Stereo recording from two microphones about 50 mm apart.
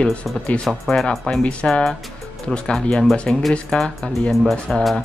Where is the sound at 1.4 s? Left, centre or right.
Left.